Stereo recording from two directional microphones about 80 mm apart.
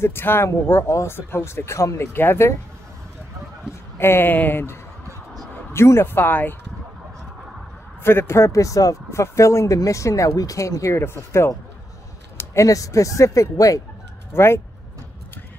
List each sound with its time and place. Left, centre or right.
0.0 s speech: left
4.0 s speech: left
8.0 s speech: left
12.5 s speech: left
14.3 s speech: left